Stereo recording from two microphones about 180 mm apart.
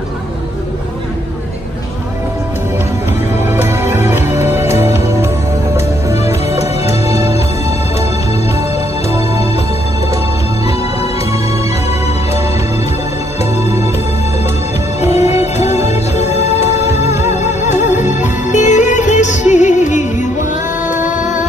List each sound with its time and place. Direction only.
3.4 s music: 10° right (ahead or behind)
6.0 s music: 15° right (ahead or behind)
15.0 s music: 35° left (ahead or behind)
20.8 s music: 10° right (ahead or behind)
21.2 s music: 45° left (ahead or behind)